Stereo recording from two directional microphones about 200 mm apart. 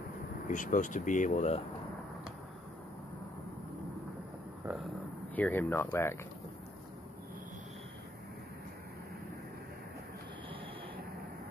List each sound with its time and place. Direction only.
0.5 s speech: 40° left (ahead or behind)
5.3 s speech: 10° left (ahead or behind)